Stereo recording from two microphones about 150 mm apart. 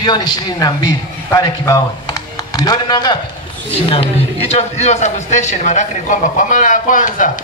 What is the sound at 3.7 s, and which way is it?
A man's voice, 40° left (ahead or behind).